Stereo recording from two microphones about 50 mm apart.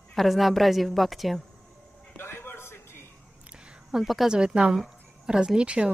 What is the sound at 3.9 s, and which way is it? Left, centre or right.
Speech, centre.